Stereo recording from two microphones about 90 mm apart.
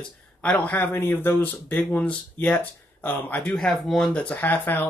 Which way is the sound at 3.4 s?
10° left (ahead or behind).